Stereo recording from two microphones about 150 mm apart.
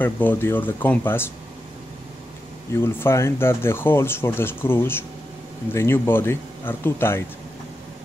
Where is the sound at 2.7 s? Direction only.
15° left (ahead or behind).